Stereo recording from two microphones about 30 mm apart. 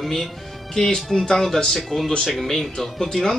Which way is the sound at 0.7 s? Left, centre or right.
Centre.